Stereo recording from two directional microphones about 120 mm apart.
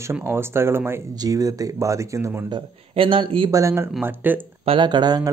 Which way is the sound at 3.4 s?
25° right (ahead or behind).